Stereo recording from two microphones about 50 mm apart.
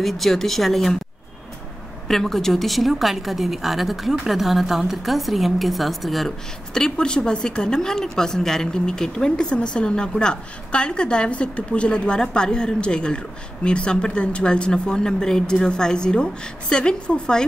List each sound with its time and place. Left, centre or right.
0.0 s speech: centre
2.0 s a woman's voice: centre